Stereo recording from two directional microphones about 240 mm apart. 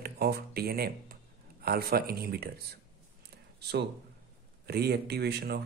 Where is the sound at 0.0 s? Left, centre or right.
Right.